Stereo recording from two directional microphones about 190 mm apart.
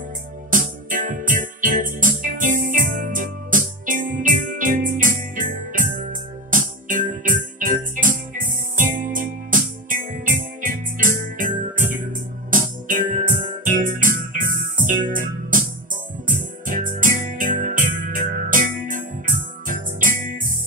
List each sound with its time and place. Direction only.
0.5 s music: 45° right (ahead or behind)